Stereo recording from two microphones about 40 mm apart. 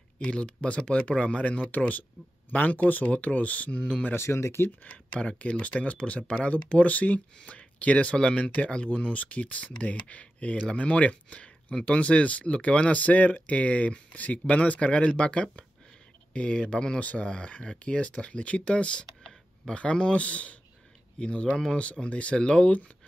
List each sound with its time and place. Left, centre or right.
0.3 s speech: left
3.1 s speech: left
4.1 s speech: left
4.8 s speech: left
17.0 s speech: left
22.7 s speech: left